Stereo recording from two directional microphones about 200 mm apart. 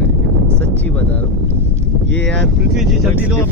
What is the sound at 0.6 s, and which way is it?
Speech, 10° left (ahead or behind).